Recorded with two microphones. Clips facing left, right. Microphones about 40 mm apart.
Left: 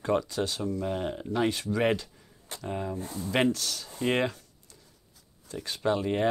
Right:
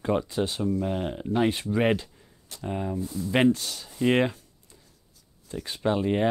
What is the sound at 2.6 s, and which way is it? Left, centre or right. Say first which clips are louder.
Speech: right 3 dB; centre.